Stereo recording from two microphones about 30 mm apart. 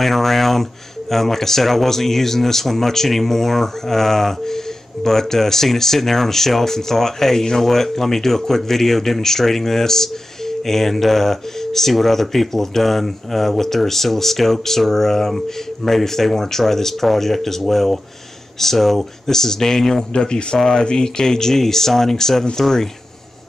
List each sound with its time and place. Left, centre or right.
0.0 s speech: centre
20.1 s speech: left; by 22.8 s centre